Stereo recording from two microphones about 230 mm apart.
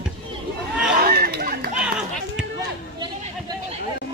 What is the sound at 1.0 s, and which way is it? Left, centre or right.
Chatter, right.